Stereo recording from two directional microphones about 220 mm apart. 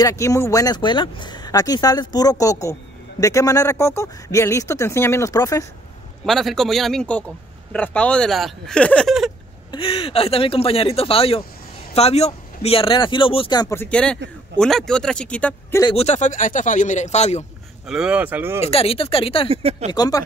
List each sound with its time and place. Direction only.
0.0 s speech: 15° left (ahead or behind)
6.2 s a man's voice: centre (ahead or behind)
9.7 s a man's voice: 25° left (ahead or behind); by 15.8 s 5° left (ahead or behind)
15.8 s speech: 25° left (ahead or behind)
17.8 s speech: 5° right (ahead or behind)
18.6 s speech: 25° left (ahead or behind)
19.5 s speech: 25° right (ahead or behind)
19.9 s speech: 15° left (ahead or behind)